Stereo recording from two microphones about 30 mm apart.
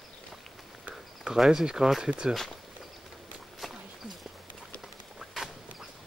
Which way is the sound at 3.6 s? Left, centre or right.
Centre.